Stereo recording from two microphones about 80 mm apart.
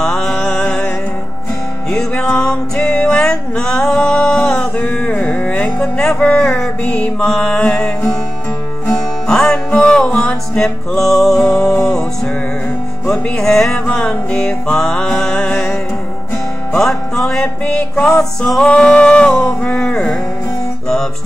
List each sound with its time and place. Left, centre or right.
0.0 s music: centre
1.9 s music: centre
5.8 s music: centre
9.3 s music: centre
13.4 s music: centre